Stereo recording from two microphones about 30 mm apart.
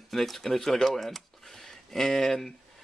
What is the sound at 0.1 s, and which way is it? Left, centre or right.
Speech, centre.